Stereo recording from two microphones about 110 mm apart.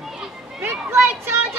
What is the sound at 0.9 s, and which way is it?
Children playing, 20° right (ahead or behind).